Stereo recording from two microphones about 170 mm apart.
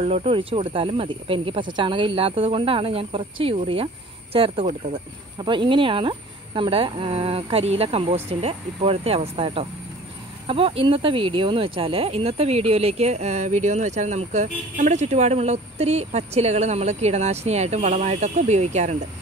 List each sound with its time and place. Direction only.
0.0 s speech: 35° right (ahead or behind)